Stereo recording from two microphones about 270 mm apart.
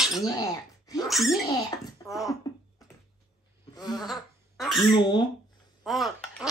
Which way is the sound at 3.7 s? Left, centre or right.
Centre.